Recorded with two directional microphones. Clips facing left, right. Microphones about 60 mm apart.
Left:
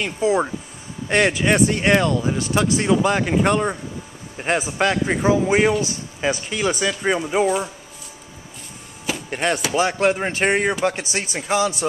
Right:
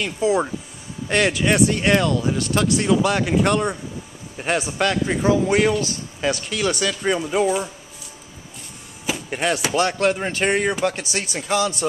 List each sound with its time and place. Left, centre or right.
0.0 s speech: centre
3.0 s speech: centre
4.7 s speech: left
7.4 s speech: centre
9.0 s a sound: centre
9.9 s speech: left